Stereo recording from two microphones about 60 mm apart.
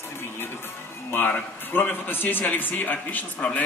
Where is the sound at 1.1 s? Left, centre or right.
Left.